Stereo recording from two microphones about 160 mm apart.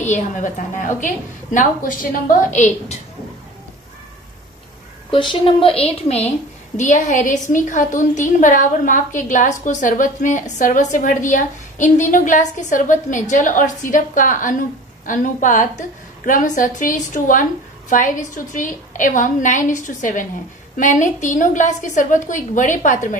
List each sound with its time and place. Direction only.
0.0 s a woman's voice: 50° left (ahead or behind)
5.1 s a woman's voice: 30° left (ahead or behind)
6.8 s a woman's voice: 50° left (ahead or behind)